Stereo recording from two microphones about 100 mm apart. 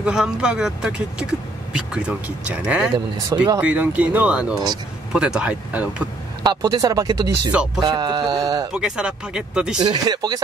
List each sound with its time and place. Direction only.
0.0 s speech: 5° right (ahead or behind)
3.3 s speech: 35° right (ahead or behind)
3.6 s speech: 15° right (ahead or behind)
6.4 s speech: 45° right (ahead or behind)
8.7 s speech: 5° right (ahead or behind)
9.8 s speech: 45° right (ahead or behind)